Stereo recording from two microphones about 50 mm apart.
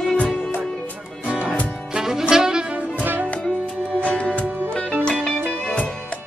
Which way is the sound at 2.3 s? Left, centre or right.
Centre.